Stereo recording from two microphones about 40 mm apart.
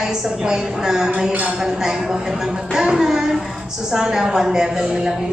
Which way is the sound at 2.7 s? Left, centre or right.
Centre.